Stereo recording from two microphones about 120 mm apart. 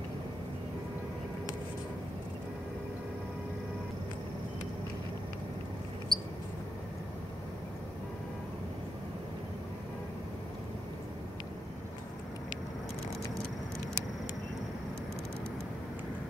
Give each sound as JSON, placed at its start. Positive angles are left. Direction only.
{"t": 6.1, "sound": "mouse", "side_deg": 5}